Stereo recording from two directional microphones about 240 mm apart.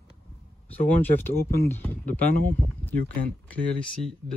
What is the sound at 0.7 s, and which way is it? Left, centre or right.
Speech, centre.